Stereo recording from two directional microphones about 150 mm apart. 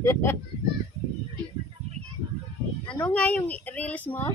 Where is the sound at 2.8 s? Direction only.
10° left (ahead or behind).